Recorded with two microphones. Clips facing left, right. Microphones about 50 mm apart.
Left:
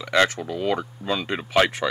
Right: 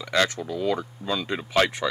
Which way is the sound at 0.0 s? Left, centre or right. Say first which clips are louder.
Left 3 dB; left.